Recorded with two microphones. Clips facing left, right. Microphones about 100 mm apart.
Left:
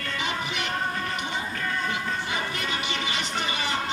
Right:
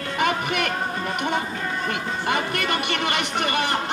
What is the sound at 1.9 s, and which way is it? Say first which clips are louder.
Music: right 4 dB; 60° right (ahead or behind).